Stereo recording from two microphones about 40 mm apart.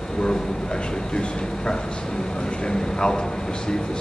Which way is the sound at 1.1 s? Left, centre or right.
Left.